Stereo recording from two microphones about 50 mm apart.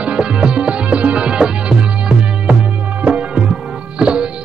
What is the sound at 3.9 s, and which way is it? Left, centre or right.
Music, centre.